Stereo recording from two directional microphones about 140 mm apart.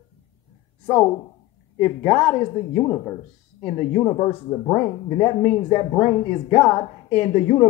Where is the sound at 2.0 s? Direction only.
10° left (ahead or behind).